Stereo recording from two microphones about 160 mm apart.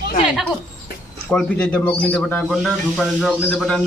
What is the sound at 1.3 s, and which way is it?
A man's voice, 5° left (ahead or behind).